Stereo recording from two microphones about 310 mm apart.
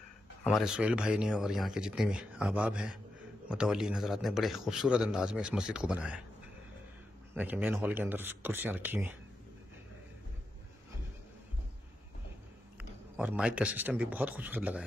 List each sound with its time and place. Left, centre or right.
0.4 s a man's voice: centre
7.3 s a man's voice: centre
13.2 s a man's voice: centre